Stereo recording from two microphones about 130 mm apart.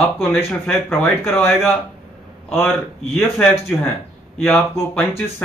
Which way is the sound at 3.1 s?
Centre (ahead or behind).